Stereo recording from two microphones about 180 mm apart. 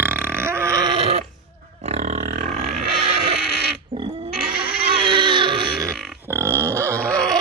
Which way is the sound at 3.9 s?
30° right (ahead or behind).